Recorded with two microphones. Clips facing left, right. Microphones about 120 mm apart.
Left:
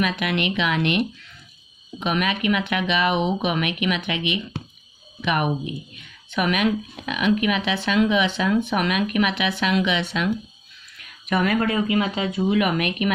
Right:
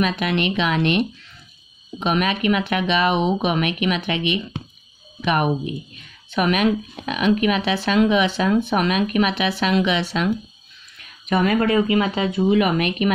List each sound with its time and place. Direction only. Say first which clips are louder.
0.0 s speech: right 2 dB; 30° right (ahead or behind)